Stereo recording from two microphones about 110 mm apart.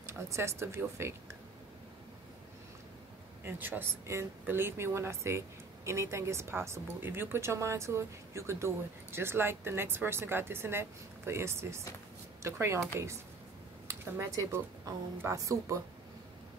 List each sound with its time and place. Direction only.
0.0 s speech: 25° right (ahead or behind)
3.4 s speech: 15° right (ahead or behind)
13.8 s speech: 25° right (ahead or behind)